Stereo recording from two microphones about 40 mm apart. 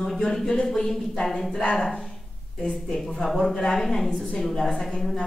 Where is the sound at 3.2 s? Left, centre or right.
Centre.